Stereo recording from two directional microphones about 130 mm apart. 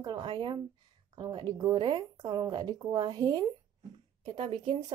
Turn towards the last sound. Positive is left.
turn(degrees=-45)  # may be behind; listen again after turning